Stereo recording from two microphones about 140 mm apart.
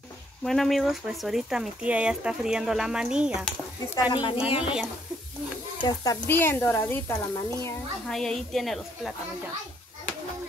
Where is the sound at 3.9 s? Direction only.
35° left (ahead or behind).